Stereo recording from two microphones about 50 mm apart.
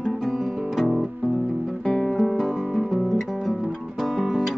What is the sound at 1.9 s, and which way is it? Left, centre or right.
Music, centre.